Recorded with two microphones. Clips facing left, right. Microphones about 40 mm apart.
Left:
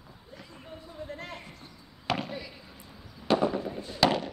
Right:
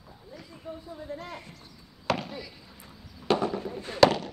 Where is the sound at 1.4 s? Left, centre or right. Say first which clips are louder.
Even; left.